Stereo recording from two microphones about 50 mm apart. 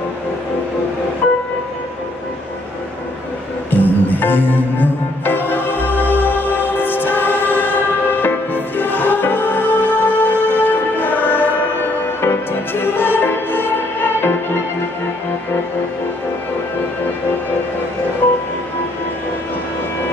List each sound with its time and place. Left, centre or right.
3.7 s music: left